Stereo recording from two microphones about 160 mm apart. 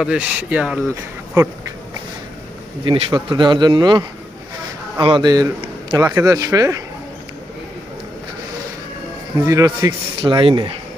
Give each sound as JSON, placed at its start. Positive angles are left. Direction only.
{"t": 0.0, "sound": "speech", "side_deg": -5}
{"t": 2.8, "sound": "speech", "side_deg": -30}
{"t": 5.0, "sound": "speech", "side_deg": -30}
{"t": 9.5, "sound": "speech", "side_deg": -20}
{"t": 10.2, "sound": "speech", "side_deg": -30}